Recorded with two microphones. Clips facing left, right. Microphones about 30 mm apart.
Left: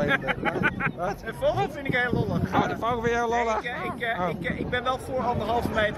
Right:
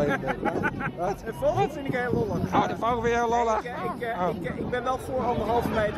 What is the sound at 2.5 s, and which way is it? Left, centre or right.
Speech, centre.